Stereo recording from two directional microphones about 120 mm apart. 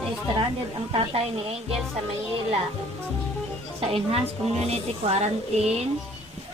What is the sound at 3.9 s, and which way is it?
A woman's voice, 55° right (ahead or behind).